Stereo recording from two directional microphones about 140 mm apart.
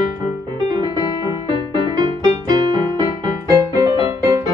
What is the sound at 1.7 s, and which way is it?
Music, 35° right (ahead or behind).